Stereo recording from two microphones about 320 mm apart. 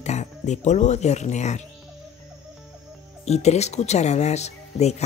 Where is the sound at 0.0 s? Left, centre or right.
Left.